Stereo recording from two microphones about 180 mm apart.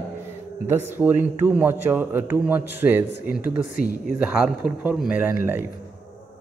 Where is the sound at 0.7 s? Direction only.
10° right (ahead or behind).